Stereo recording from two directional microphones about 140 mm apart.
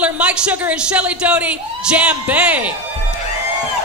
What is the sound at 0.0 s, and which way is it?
Speech, 5° right (ahead or behind).